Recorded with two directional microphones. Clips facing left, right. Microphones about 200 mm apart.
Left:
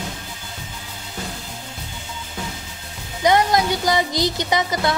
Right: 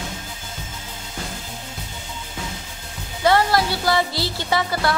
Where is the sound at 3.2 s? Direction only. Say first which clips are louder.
Left 1 dB; 15° left (ahead or behind).